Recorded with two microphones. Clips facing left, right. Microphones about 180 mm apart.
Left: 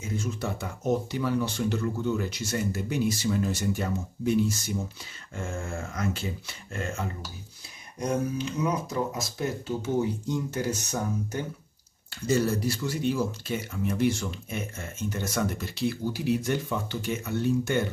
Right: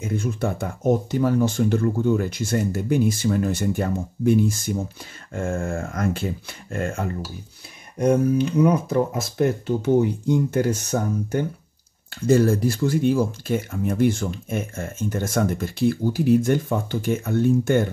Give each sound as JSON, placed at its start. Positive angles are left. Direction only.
{"t": 0.0, "sound": "speech", "side_deg": -55}